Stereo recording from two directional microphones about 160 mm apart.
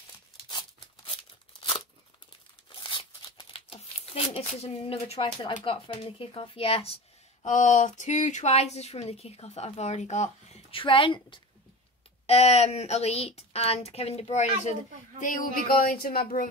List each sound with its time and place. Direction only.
2.7 s speech: 30° left (ahead or behind)
7.4 s speech: 50° left (ahead or behind); by 11.4 s 30° left (ahead or behind)
12.3 s speech: 40° left (ahead or behind); by 16.3 s 70° left (ahead or behind)